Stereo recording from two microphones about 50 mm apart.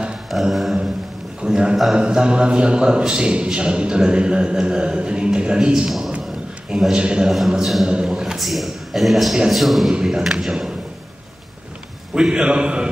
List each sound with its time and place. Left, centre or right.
0.3 s mantra: centre
1.4 s a man's voice: centre
5.9 s a man's voice: centre
6.7 s speech: centre
7.2 s a man's voice: centre
12.1 s a man's voice: centre